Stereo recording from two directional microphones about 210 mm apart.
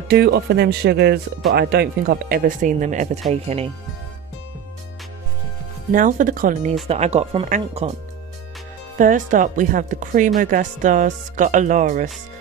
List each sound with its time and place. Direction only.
0.1 s speech: 50° right (ahead or behind); by 3.7 s 30° right (ahead or behind)
5.9 s speech: 40° right (ahead or behind)
6.9 s speech: 30° right (ahead or behind)
8.9 s speech: 40° right (ahead or behind)